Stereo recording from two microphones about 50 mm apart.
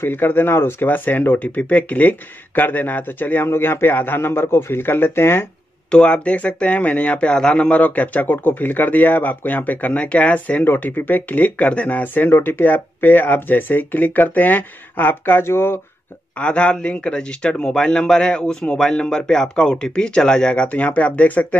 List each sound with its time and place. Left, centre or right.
0.0 s a man's voice: left
1.3 s speech: left
3.4 s a man's voice: left
5.9 s speech: left
10.7 s speech: left
15.4 s speech: left
16.3 s a man's voice: left